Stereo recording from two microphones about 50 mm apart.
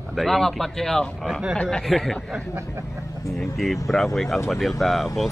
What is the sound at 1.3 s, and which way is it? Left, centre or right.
Speech, centre.